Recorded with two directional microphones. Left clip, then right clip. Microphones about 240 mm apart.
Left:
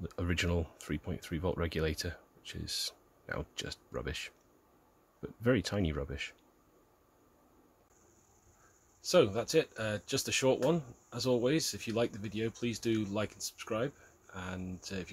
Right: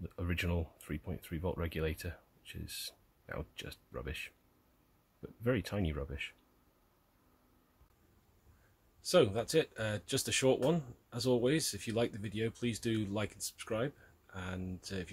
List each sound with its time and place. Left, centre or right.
0.0 s speech: centre
9.1 s speech: centre